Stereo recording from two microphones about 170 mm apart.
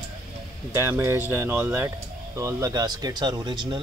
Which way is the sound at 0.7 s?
15° right (ahead or behind).